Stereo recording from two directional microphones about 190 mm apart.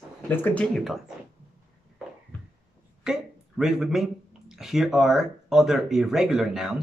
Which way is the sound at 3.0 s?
Centre (ahead or behind).